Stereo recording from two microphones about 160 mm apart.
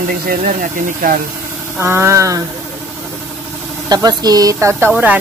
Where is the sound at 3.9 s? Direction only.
25° right (ahead or behind).